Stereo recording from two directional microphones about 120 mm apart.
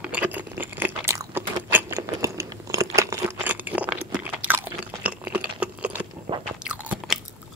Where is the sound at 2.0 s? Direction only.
25° right (ahead or behind).